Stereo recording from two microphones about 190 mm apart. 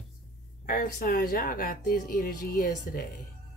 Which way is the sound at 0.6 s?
50° left (ahead or behind).